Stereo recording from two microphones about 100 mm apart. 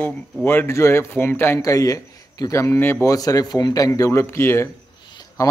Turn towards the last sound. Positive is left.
turn(degrees=35)  # may be behind; listen again after turning